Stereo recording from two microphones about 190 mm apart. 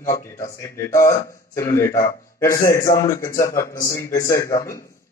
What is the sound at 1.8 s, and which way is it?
Speech, 45° left (ahead or behind).